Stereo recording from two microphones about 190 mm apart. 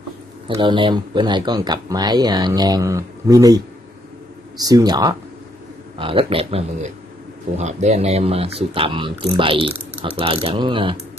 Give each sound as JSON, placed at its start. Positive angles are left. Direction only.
{"t": 0.5, "sound": "speech", "side_deg": -25}